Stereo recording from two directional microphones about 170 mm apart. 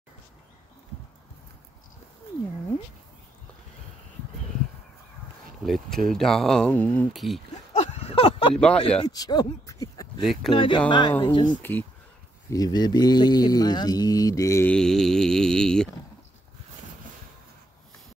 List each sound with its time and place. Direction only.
5.6 s speech: centre (ahead or behind)
7.7 s a sound: 40° left (ahead or behind)
8.5 s speech: 5° left (ahead or behind)
9.0 s speech: 25° left (ahead or behind)
14.7 s speech: 5° left (ahead or behind)